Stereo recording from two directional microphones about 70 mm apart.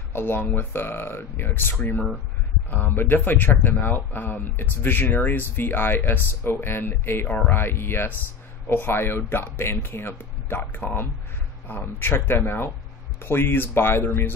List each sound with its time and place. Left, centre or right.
0.1 s speech: left